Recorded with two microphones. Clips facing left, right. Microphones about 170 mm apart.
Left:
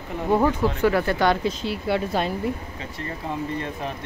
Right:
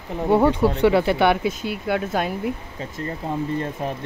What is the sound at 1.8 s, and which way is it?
Speech, centre (ahead or behind).